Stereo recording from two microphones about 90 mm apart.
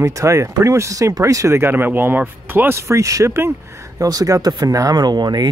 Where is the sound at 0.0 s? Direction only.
35° right (ahead or behind).